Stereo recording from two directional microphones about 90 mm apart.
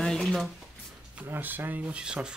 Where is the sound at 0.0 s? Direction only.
5° left (ahead or behind).